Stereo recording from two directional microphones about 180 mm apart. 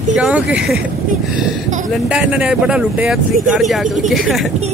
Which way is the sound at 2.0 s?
5° right (ahead or behind).